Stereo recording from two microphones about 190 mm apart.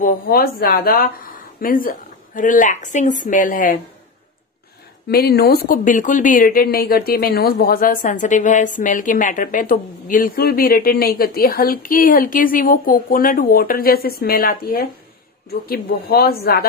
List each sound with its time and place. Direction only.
0.0 s speech: 50° left (ahead or behind)
5.0 s speech: 55° left (ahead or behind)